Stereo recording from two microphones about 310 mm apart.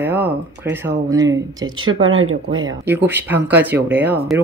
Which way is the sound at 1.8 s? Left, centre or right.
Right.